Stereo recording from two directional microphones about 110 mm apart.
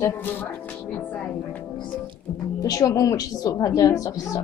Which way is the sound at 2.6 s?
35° left (ahead or behind).